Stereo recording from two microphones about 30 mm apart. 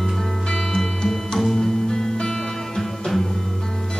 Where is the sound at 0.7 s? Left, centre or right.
Left.